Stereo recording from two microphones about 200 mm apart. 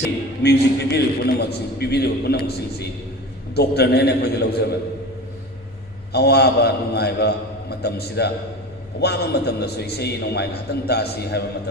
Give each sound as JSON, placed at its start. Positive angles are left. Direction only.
{"t": 0.4, "sound": "a man's voice", "side_deg": 55}
{"t": 6.1, "sound": "a man's voice", "side_deg": 55}